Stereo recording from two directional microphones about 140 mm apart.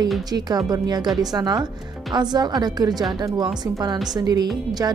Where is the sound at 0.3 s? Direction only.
30° right (ahead or behind).